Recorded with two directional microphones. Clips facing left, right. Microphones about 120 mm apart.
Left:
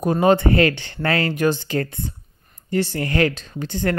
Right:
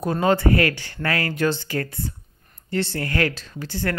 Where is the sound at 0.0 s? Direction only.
20° left (ahead or behind).